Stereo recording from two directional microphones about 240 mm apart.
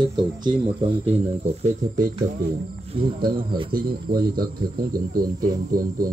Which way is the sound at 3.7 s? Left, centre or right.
Right.